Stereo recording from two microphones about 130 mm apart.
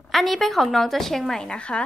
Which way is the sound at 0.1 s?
Centre (ahead or behind).